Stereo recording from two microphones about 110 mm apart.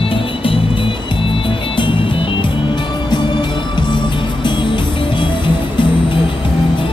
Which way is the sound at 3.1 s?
45° left (ahead or behind).